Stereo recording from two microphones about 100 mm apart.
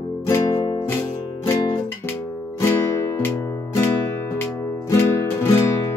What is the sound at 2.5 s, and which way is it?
Music, 30° left (ahead or behind).